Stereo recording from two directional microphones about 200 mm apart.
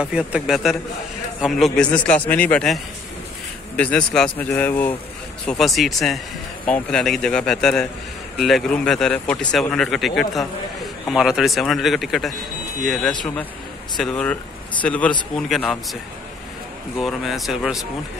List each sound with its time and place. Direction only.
0.0 s speech: 5° right (ahead or behind)
17.0 s speech: centre (ahead or behind)